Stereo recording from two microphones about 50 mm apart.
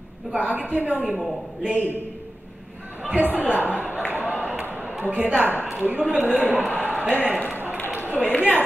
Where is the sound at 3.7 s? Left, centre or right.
Right.